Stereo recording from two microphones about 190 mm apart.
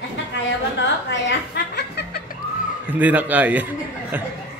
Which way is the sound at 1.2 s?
65° left (ahead or behind).